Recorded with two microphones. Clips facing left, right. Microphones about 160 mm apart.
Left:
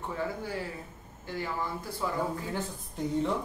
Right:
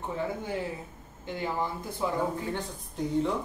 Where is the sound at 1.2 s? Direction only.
20° right (ahead or behind).